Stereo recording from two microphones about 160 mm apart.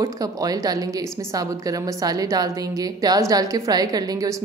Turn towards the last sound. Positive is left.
turn(degrees=-25)  # may be behind; listen again after turning